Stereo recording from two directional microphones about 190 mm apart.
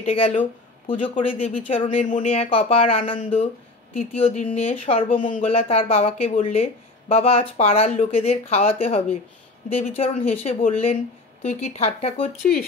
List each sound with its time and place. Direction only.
0.0 s speech: 35° left (ahead or behind)
5.1 s speech: 45° left (ahead or behind)
5.4 s speech: 30° left (ahead or behind)